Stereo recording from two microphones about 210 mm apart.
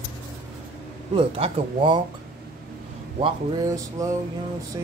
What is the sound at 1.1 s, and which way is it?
Speech, 25° right (ahead or behind).